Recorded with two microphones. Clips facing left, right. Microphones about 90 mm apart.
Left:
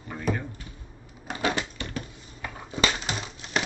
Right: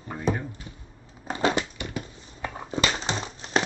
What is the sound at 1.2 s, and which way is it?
Crushing, 30° right (ahead or behind).